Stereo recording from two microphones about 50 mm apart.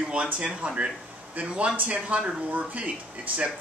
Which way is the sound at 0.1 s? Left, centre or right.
Centre.